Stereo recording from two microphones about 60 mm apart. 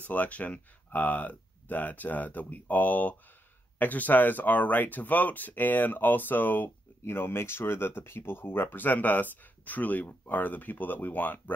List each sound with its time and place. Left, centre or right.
0.0 s speech: left